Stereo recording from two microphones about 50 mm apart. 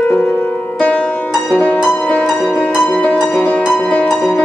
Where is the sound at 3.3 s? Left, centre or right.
Left.